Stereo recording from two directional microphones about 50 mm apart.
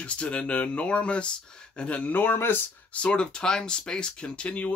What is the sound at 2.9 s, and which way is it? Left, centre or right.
Speech, left.